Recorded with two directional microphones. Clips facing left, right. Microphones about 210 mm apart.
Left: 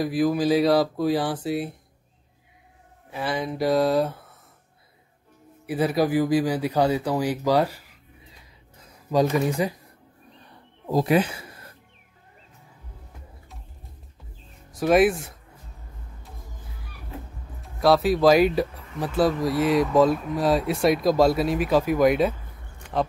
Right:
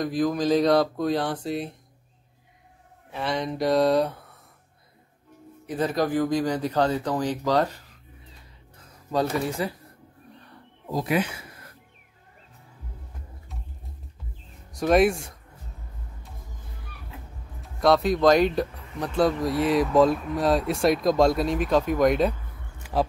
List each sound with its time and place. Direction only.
0.0 s speech: 5° left (ahead or behind)
3.1 s speech: 5° left (ahead or behind)
5.7 s speech: 10° left (ahead or behind)
9.1 s speech: 15° left (ahead or behind)
10.9 s speech: 35° left (ahead or behind)
14.7 s speech: 5° left (ahead or behind)
17.6 s speech: 5° left (ahead or behind)